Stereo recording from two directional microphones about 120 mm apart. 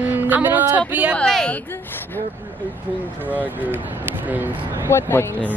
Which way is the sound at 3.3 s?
15° right (ahead or behind).